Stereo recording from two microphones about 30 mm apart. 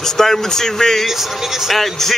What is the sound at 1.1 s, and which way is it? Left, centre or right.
Speech, centre.